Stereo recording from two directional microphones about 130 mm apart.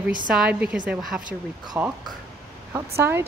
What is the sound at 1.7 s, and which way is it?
Speech, 15° right (ahead or behind).